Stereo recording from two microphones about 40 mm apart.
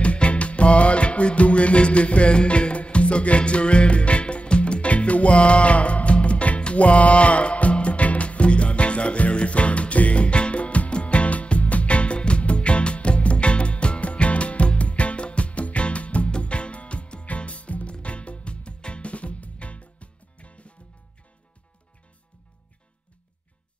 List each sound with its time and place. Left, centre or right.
0.0 s music: left